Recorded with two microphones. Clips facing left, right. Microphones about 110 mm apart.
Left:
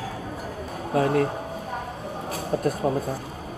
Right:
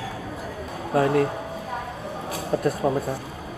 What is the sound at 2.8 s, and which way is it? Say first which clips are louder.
Speech: right 1 dB; 15° right (ahead or behind).